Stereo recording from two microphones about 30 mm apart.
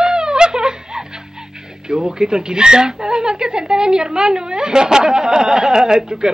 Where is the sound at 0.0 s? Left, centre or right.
Right.